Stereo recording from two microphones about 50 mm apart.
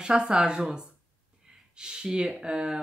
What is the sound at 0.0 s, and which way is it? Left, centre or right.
Speech, centre.